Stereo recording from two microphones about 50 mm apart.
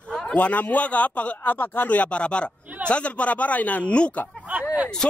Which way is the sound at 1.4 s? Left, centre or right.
Left.